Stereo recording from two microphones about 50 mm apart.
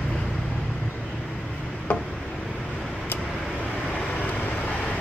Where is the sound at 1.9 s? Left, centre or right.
Left.